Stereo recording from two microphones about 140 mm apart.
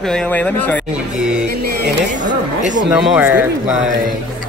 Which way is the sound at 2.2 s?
65° right (ahead or behind).